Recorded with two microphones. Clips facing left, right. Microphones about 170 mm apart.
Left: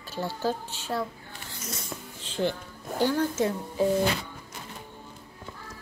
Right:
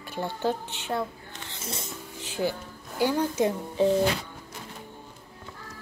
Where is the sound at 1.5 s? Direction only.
25° right (ahead or behind).